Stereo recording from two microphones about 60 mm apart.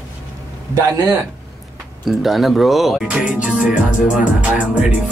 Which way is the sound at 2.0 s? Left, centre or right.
Centre.